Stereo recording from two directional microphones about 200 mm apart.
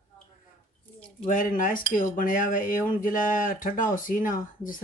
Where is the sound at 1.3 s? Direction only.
40° left (ahead or behind).